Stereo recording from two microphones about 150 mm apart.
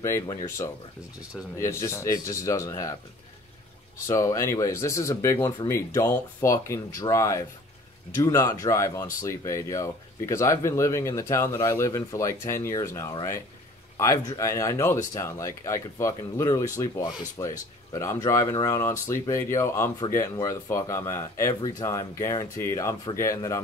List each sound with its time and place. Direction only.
0.0 s speech: 20° left (ahead or behind)
4.1 s speech: 20° left (ahead or behind)